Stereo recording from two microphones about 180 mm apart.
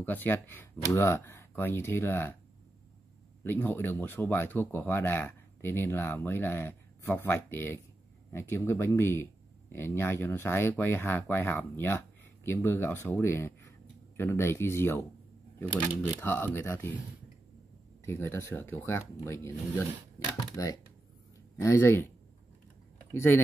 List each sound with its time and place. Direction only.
0.0 s speech: 10° left (ahead or behind)
3.4 s speech: 10° left (ahead or behind)
18.0 s speech: 15° left (ahead or behind)